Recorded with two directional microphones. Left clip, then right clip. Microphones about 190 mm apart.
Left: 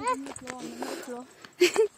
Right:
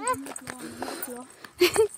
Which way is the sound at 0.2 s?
60° right (ahead or behind).